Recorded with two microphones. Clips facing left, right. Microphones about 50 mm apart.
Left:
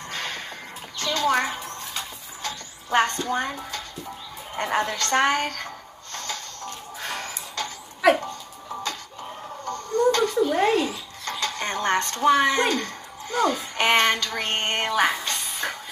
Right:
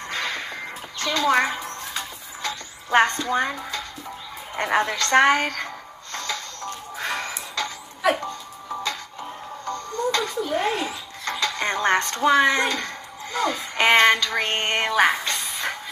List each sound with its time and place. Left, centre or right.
0.1 s music: right
0.9 s a child's voice: right
2.4 s music: right
4.6 s a woman's voice: right
6.1 s music: right
10.1 s music: right
12.3 s speech: right